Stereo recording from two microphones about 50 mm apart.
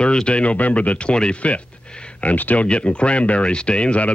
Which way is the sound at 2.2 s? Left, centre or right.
Left.